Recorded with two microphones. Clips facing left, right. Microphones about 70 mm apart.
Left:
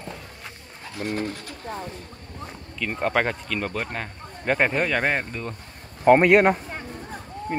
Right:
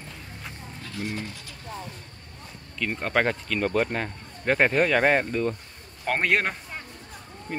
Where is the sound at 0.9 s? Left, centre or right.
Left.